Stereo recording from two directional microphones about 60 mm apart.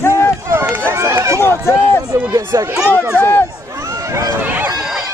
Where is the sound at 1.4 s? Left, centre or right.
Left.